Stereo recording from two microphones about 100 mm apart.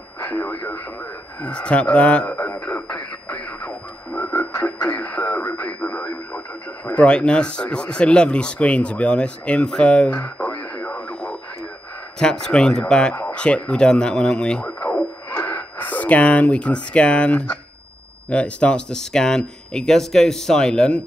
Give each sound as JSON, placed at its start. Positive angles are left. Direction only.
{"t": 1.4, "sound": "speech", "side_deg": 10}
{"t": 2.3, "sound": "speech", "side_deg": 30}
{"t": 3.6, "sound": "frog", "side_deg": 20}
{"t": 4.8, "sound": "speech", "side_deg": 15}
{"t": 10.1, "sound": "radio", "side_deg": 25}
{"t": 12.2, "sound": "speech", "side_deg": 5}
{"t": 14.8, "sound": "a sound", "side_deg": 20}
{"t": 18.3, "sound": "speech", "side_deg": 10}